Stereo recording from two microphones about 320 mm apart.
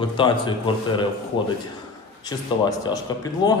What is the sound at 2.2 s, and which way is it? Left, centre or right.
Speech, centre.